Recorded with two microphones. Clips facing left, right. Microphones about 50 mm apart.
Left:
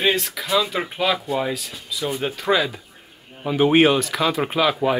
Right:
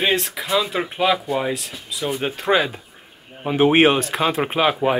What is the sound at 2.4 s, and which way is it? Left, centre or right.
Speech, right.